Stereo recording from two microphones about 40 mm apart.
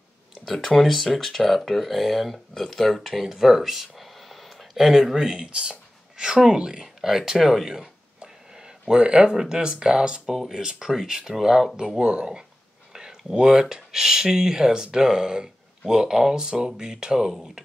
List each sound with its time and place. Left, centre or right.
0.7 s speech: centre
5.4 s speech: right
8.2 s a sound: centre
9.4 s speech: centre
10.2 s speech: centre